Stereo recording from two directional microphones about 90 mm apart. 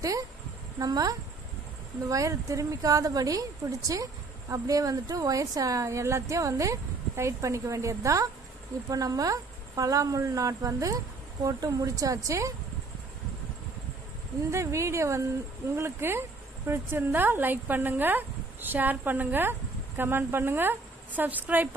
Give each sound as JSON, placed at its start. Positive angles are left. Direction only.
{"t": 0.7, "sound": "a woman's voice", "side_deg": -45}
{"t": 14.5, "sound": "a woman's voice", "side_deg": -35}